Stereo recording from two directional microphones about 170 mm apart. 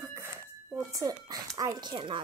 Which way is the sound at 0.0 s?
15° right (ahead or behind).